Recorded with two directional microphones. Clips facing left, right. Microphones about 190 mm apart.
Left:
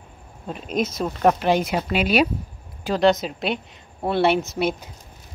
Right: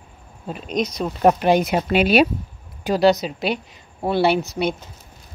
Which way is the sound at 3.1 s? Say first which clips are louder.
Right 1 dB; centre (ahead or behind).